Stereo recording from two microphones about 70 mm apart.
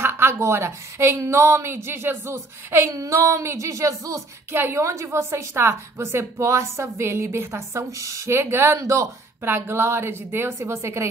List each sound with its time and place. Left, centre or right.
0.0 s a woman's voice: right
2.9 s female singing: right
4.5 s a woman's voice: right
9.4 s a woman's voice: right